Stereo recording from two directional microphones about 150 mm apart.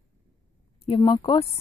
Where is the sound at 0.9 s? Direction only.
30° left (ahead or behind).